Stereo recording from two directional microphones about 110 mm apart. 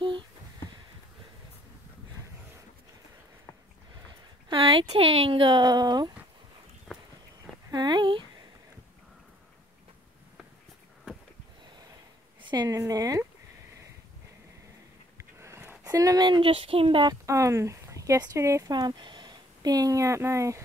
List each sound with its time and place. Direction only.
4.5 s speech: 55° right (ahead or behind)
5.6 s speech: 40° right (ahead or behind)
7.7 s a sound: 40° right (ahead or behind)
12.4 s a sound: 45° right (ahead or behind)
12.6 s speech: 30° right (ahead or behind)
15.3 s a sound: 25° right (ahead or behind)
15.8 s speech: 30° right (ahead or behind)
16.3 s speech: 55° right (ahead or behind)
17.1 s speech: 30° right (ahead or behind)
18.7 s speech: 40° right (ahead or behind)